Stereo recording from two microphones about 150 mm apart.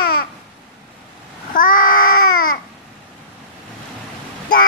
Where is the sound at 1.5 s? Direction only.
65° left (ahead or behind).